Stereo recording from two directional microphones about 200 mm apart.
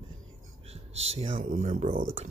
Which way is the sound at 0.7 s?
30° right (ahead or behind).